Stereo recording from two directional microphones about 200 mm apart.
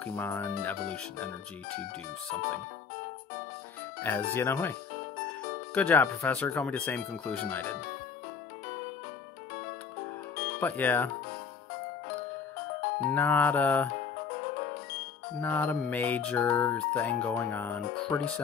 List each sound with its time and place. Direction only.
0.0 s speech: 10° left (ahead or behind)
4.0 s speech: 10° left (ahead or behind)
5.8 s speech: 10° left (ahead or behind)
10.6 s speech: 10° left (ahead or behind)
13.1 s speech: 10° left (ahead or behind)
14.4 s music: 40° left (ahead or behind)
15.4 s speech: 10° left (ahead or behind)